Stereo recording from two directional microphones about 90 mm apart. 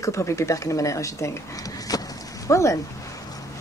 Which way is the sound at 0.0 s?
35° left (ahead or behind).